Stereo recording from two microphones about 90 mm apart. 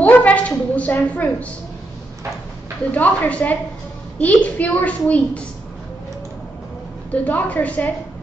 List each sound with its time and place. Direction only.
0.0 s a woman's voice: 15° left (ahead or behind)
2.9 s a woman's voice: 15° left (ahead or behind)
7.1 s a woman's voice: 15° left (ahead or behind)